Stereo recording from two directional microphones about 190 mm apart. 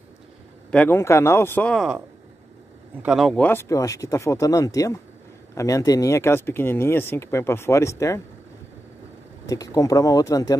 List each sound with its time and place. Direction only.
0.7 s speech: 10° left (ahead or behind)
3.0 s speech: 5° right (ahead or behind); by 8.2 s 15° left (ahead or behind)
9.5 s speech: 20° left (ahead or behind)